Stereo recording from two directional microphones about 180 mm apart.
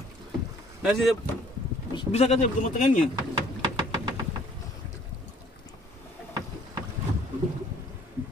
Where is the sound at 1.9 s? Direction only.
35° left (ahead or behind).